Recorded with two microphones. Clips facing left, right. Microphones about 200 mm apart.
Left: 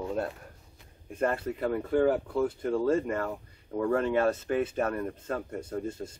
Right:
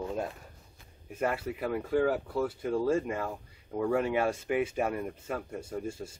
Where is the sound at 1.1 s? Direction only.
5° right (ahead or behind).